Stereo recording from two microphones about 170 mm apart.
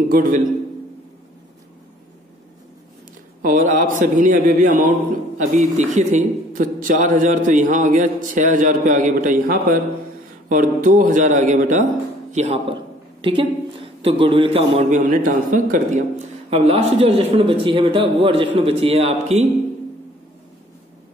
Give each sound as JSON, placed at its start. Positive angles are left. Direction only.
{"t": 0.1, "sound": "a man's voice", "side_deg": -55}
{"t": 3.4, "sound": "a man's voice", "side_deg": -50}
{"t": 13.2, "sound": "a man's voice", "side_deg": -30}
{"t": 14.9, "sound": "a man's voice", "side_deg": -50}